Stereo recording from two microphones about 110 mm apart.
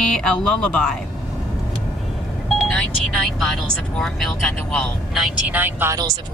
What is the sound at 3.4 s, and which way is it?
Speech, 5° left (ahead or behind).